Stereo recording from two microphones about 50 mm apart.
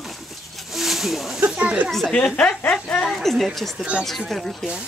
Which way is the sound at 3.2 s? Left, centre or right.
Centre.